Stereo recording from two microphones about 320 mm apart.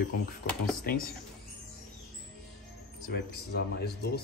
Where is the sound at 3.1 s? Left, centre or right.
Left.